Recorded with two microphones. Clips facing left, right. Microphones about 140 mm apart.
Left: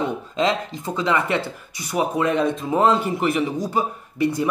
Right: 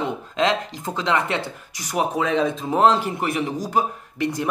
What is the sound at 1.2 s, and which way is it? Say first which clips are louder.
Speech: left 2 dB; 55° left (ahead or behind).